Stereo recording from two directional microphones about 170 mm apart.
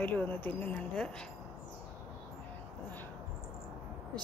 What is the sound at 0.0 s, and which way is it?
Speech, 10° left (ahead or behind).